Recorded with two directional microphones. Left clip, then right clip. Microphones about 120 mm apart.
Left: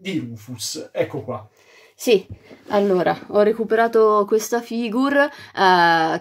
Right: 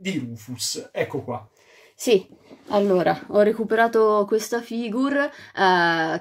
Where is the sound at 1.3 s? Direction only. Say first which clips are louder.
Left 1 dB; 15° right (ahead or behind).